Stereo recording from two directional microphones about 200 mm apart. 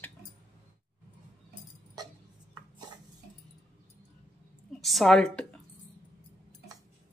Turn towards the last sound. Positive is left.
turn(degrees=5)  # may be behind; listen again after turning